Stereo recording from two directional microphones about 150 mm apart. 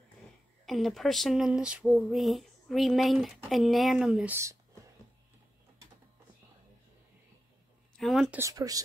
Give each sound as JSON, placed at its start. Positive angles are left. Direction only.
{"t": 0.7, "sound": "speech", "side_deg": 0}
{"t": 8.0, "sound": "speech", "side_deg": 0}
{"t": 8.4, "sound": "speech", "side_deg": -25}